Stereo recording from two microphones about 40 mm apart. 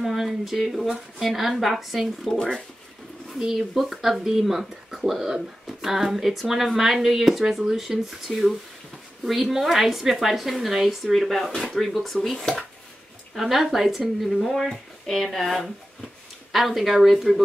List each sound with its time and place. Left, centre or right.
0.0 s speech: centre
2.3 s speech: centre
3.5 s speech: centre